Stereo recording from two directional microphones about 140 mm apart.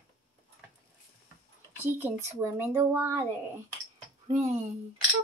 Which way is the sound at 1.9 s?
20° right (ahead or behind).